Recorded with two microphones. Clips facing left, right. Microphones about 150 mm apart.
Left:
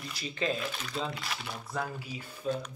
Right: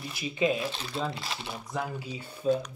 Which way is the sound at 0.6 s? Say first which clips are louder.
Right 3 dB; 30° right (ahead or behind).